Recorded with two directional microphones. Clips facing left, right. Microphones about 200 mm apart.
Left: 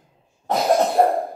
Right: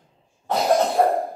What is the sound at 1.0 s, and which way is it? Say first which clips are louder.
Cough: left 3 dB; 25° left (ahead or behind).